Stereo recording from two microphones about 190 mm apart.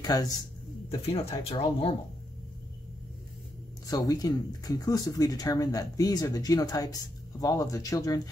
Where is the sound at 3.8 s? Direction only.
20° left (ahead or behind).